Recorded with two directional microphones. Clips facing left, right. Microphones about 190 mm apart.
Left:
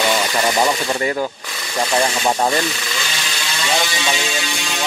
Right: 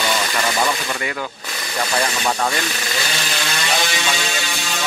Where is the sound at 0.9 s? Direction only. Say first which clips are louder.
Left 6 dB; 35° left (ahead or behind).